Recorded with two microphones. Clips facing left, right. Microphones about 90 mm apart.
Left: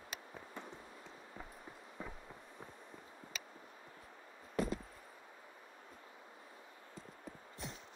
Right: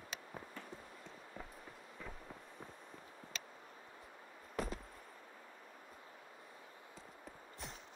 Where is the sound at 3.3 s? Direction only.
5° left (ahead or behind).